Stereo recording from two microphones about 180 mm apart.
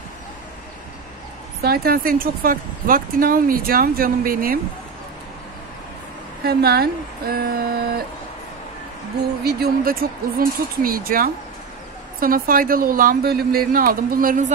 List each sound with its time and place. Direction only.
1.6 s speech: 60° right (ahead or behind)
6.4 s speech: 60° right (ahead or behind)
9.4 s speech: 60° right (ahead or behind)